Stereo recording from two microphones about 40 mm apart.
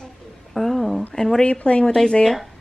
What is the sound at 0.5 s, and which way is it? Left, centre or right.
Speech, centre.